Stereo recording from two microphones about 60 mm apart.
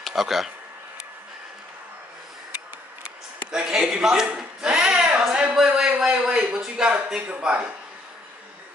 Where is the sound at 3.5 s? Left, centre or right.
Centre.